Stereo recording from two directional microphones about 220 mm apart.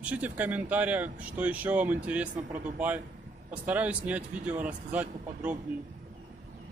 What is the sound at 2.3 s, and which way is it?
Speech, 35° right (ahead or behind).